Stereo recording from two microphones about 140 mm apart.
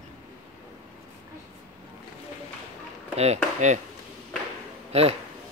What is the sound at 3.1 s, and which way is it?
Chop, 50° right (ahead or behind).